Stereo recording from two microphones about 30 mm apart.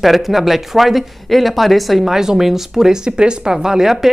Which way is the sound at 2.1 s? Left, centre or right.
Centre.